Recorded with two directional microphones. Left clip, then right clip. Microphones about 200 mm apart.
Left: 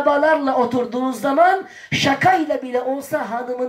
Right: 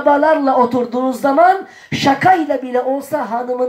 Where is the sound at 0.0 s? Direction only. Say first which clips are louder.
Right 4 dB; 40° left (ahead or behind).